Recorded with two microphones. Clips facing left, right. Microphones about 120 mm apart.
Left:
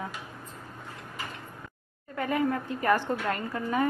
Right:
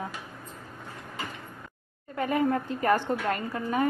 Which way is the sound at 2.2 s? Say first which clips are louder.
Right 2 dB; 30° right (ahead or behind).